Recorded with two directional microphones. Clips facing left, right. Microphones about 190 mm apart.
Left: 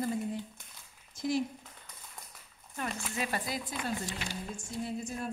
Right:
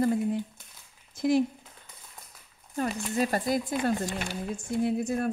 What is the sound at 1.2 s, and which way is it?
Speech, 60° right (ahead or behind).